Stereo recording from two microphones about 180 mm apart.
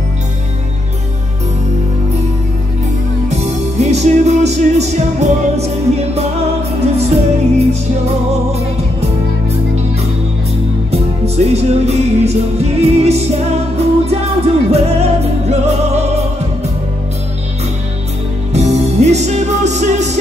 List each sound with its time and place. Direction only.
3.3 s music: 40° right (ahead or behind)
6.8 s music: 35° right (ahead or behind)
10.9 s music: 35° right (ahead or behind)
18.5 s music: 40° right (ahead or behind)